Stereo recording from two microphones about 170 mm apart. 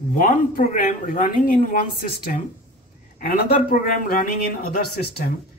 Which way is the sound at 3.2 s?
55° left (ahead or behind).